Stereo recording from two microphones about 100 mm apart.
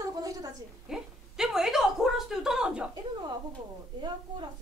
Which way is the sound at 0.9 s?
5° right (ahead or behind).